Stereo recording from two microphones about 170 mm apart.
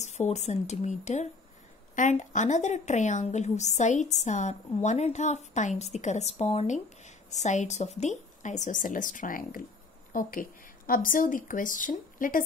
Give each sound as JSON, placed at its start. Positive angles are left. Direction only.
{"t": 0.0, "sound": "a woman's voice", "side_deg": 40}